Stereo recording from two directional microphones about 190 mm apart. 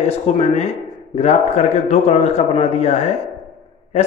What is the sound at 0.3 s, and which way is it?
A man's voice, 35° left (ahead or behind).